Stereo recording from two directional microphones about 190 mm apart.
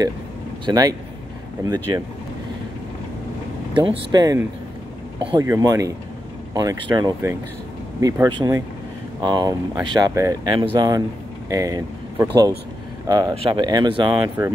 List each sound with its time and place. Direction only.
0.7 s speech: 20° right (ahead or behind)
3.7 s speech: 25° right (ahead or behind)